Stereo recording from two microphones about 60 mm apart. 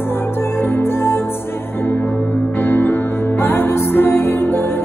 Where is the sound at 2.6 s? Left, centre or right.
Left.